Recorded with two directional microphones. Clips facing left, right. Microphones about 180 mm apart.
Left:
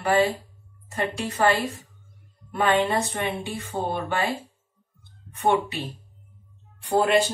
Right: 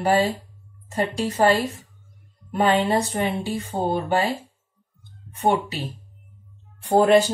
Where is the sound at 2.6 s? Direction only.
30° right (ahead or behind).